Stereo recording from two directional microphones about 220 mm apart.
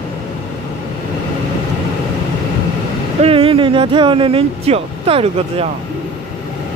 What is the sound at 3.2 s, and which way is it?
Speech, 25° right (ahead or behind).